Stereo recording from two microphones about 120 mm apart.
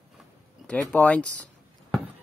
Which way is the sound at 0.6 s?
10° left (ahead or behind).